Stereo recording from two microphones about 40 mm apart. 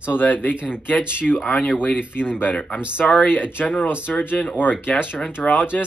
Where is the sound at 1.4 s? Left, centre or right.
Left.